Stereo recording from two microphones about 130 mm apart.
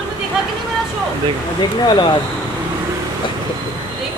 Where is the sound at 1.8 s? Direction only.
35° left (ahead or behind).